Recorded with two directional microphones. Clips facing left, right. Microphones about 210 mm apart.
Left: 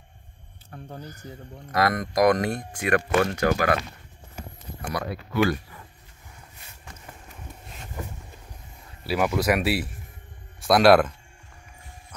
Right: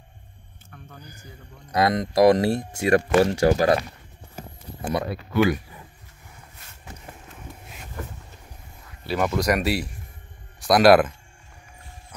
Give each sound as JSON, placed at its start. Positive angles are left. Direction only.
{"t": 0.7, "sound": "a sound", "side_deg": 35}
{"t": 1.2, "sound": "speech", "side_deg": 30}
{"t": 1.7, "sound": "speech", "side_deg": -20}
{"t": 4.9, "sound": "speech", "side_deg": -25}
{"t": 7.6, "sound": "a sound", "side_deg": -5}
{"t": 9.0, "sound": "speech", "side_deg": 5}